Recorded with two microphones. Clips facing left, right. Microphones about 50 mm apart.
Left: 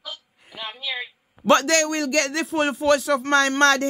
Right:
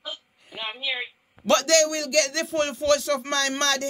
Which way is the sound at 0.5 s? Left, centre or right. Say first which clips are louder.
Even; right.